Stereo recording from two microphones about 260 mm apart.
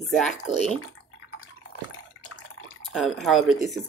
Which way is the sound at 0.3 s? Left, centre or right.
Left.